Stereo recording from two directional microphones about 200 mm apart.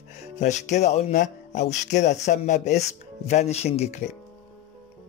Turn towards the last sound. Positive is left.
turn(degrees=35)  # may be behind; listen again after turning